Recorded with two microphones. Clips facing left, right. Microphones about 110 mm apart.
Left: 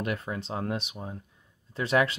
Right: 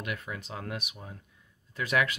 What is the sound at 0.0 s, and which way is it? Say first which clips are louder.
Speech: left 5 dB; 35° left (ahead or behind).